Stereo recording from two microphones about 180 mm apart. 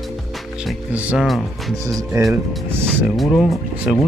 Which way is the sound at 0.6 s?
5° right (ahead or behind).